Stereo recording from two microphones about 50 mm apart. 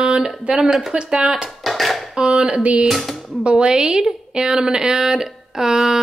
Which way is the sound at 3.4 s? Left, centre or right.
Centre.